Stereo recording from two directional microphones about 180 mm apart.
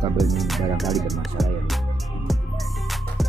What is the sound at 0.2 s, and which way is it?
Speech, centre (ahead or behind).